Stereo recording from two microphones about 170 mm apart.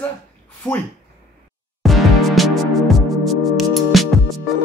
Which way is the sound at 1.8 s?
Centre (ahead or behind).